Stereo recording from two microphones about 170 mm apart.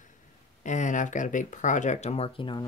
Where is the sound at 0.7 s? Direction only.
45° left (ahead or behind).